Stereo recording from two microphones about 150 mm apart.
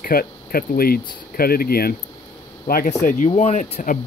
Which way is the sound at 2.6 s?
75° left (ahead or behind).